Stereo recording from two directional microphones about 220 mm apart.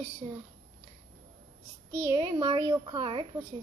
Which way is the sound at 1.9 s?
15° right (ahead or behind).